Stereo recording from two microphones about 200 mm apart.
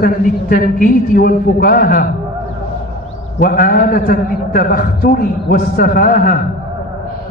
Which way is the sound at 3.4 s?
45° left (ahead or behind).